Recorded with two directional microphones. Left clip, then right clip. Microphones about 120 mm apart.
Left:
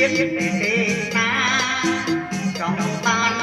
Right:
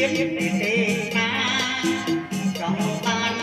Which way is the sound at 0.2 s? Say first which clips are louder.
Left 3 dB; 45° right (ahead or behind).